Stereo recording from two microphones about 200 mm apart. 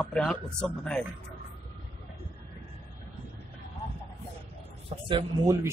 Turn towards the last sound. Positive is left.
turn(degrees=-25)  # may be behind; listen again after turning